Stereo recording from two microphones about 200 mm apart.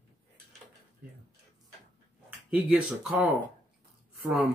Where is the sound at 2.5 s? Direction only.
5° right (ahead or behind).